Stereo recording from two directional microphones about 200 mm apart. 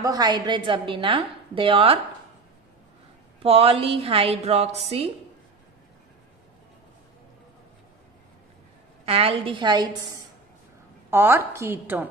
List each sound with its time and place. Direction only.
0.0 s a woman's voice: 20° right (ahead or behind)
3.4 s a woman's voice: 30° right (ahead or behind)
9.0 s a woman's voice: 30° right (ahead or behind)
11.1 s a woman's voice: 10° right (ahead or behind)